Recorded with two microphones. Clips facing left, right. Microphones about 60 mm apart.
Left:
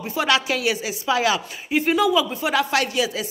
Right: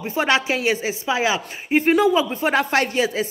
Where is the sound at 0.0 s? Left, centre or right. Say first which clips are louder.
Right 1 dB; right.